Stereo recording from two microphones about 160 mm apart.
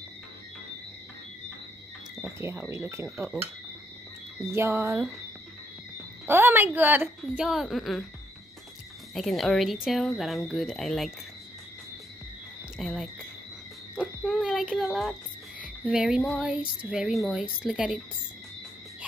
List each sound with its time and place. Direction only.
2.4 s a woman's voice: 15° right (ahead or behind)
4.5 s a woman's voice: 15° right (ahead or behind)
6.2 s a woman's voice: 15° right (ahead or behind)
9.1 s female singing: centre (ahead or behind)
12.7 s speech: centre (ahead or behind)
13.9 s a sound: 5° right (ahead or behind)
15.6 s female singing: 5° right (ahead or behind)